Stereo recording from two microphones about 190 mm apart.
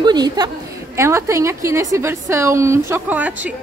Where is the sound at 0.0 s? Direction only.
20° right (ahead or behind).